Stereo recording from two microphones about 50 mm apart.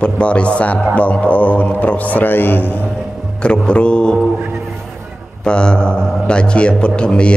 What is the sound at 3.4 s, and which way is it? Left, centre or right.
Speech, left.